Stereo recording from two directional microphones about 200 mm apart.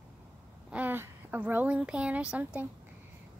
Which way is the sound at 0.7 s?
10° right (ahead or behind).